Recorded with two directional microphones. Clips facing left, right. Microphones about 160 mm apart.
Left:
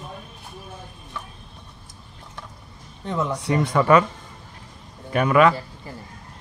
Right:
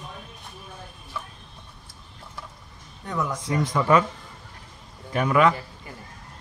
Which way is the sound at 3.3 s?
70° left (ahead or behind).